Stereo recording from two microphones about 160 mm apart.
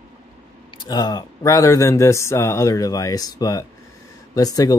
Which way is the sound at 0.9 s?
25° left (ahead or behind).